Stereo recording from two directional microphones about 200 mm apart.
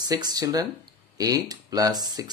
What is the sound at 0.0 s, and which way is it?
Speech, 20° right (ahead or behind).